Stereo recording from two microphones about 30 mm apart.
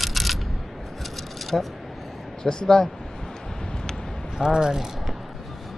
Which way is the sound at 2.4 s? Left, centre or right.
Left.